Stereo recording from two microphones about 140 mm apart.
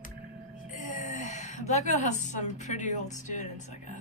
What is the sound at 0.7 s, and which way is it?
A woman's voice, 60° left (ahead or behind).